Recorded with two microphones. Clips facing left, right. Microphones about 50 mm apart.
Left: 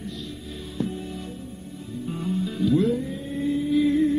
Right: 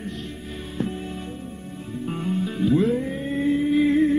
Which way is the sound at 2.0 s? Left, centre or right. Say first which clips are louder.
Right 2 dB; right.